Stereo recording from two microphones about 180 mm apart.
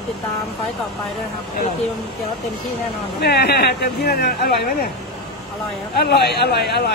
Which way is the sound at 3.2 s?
65° left (ahead or behind).